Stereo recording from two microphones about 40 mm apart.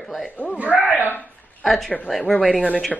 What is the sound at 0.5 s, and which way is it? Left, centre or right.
Speech, right.